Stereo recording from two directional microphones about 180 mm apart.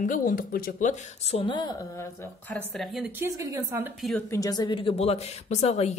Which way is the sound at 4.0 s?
Centre (ahead or behind).